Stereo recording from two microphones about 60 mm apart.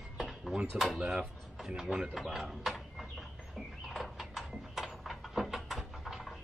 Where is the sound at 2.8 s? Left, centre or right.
Centre.